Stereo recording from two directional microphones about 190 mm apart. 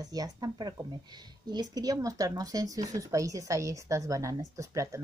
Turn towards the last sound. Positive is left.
turn(degrees=-15)  # may be behind; listen again after turning